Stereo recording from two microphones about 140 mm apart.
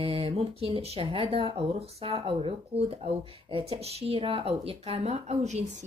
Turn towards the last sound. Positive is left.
turn(degrees=-55)  # may be behind; listen again after turning